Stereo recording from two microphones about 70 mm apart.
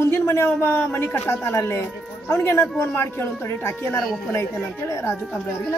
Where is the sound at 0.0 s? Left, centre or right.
Left.